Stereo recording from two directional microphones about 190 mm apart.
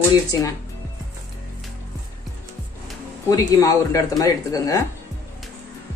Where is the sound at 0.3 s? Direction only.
20° left (ahead or behind).